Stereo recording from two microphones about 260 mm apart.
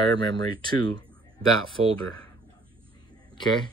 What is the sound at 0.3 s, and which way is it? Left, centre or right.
Speech, centre.